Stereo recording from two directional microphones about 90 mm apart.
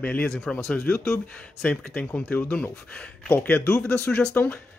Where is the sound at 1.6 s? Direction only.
15° left (ahead or behind).